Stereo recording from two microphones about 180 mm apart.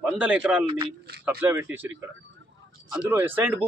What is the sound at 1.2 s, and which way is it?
Speech, 10° right (ahead or behind).